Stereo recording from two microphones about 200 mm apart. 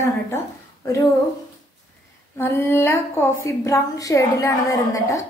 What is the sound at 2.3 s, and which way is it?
A woman's voice, 10° left (ahead or behind).